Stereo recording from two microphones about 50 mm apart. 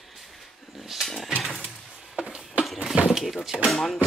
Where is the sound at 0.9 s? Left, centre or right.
Centre.